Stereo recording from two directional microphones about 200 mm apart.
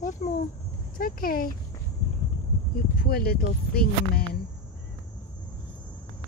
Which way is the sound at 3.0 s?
50° left (ahead or behind).